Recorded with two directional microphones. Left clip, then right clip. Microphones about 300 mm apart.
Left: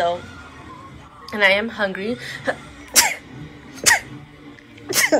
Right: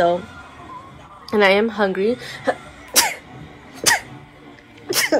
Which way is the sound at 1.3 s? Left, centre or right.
Centre.